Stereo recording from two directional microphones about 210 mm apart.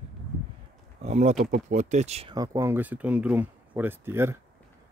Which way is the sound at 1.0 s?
30° right (ahead or behind).